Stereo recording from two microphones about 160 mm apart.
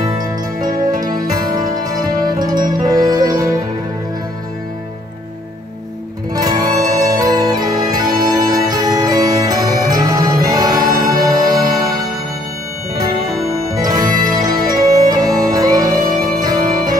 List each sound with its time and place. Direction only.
1.0 s music: 25° right (ahead or behind)
6.3 s music: 25° right (ahead or behind)
13.0 s music: 25° right (ahead or behind)